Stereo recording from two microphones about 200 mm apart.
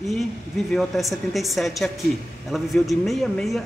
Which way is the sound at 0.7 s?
Centre (ahead or behind).